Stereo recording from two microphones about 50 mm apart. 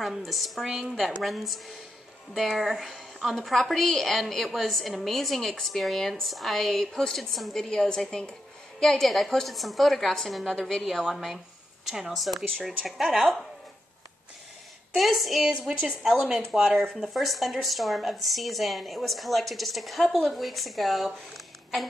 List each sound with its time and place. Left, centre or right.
0.0 s speech: centre
7.6 s a woman's voice: centre
8.2 s music: centre
9.0 s a woman's voice: centre
13.2 s a woman's voice: centre
15.0 s speech: centre